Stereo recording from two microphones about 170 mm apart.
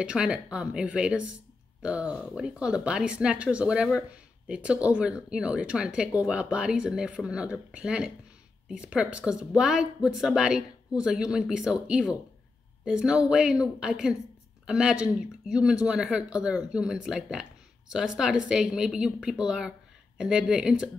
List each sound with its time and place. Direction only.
0.0 s speech: 5° right (ahead or behind)